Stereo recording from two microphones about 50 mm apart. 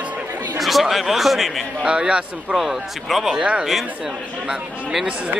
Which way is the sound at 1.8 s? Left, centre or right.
Centre.